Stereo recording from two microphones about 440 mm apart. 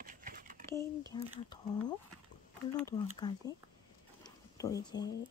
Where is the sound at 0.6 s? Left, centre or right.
Centre.